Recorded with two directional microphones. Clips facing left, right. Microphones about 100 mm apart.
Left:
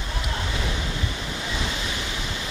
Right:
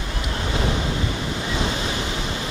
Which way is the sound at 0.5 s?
35° right (ahead or behind).